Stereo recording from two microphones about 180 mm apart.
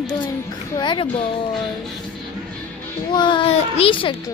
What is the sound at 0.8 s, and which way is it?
Speech, 30° left (ahead or behind).